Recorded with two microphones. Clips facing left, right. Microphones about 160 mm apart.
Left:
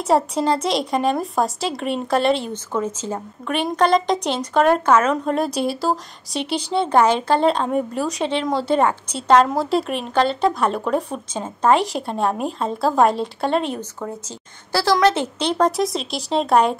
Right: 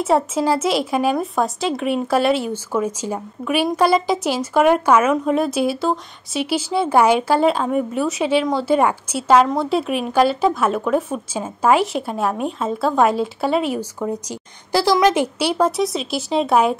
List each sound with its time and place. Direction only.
0.0 s speech: centre (ahead or behind)